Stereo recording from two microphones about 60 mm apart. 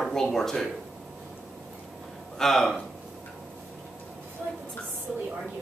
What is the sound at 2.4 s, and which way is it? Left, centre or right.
Speech, centre.